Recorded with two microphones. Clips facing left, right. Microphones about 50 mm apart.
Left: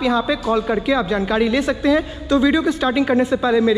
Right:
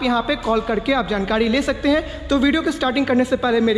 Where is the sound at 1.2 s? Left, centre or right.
Right.